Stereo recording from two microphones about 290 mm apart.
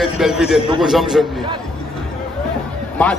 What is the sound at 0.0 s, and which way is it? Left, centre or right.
A man's voice, centre.